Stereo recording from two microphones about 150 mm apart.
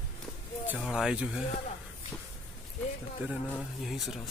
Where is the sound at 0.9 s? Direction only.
5° right (ahead or behind).